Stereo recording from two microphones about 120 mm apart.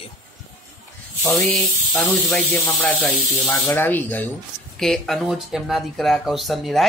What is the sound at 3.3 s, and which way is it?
Speech, 25° left (ahead or behind).